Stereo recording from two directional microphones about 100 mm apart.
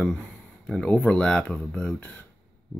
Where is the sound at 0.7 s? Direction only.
10° left (ahead or behind).